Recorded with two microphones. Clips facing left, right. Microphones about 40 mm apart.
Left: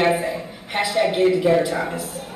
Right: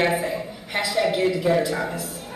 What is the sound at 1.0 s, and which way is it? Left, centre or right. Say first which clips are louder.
Music: left 2 dB; left.